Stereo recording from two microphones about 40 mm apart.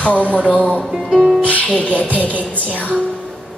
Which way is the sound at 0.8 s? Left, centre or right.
Centre.